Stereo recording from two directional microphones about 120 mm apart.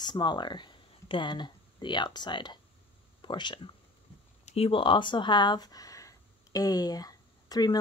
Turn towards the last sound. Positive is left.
turn(degrees=35)  # may be behind; listen again after turning